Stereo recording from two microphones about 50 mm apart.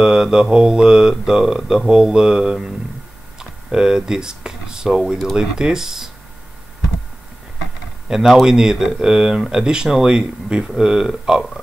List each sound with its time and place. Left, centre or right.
0.0 s speech: centre
3.3 s a sound: centre
5.3 s speech: centre
8.3 s speech: centre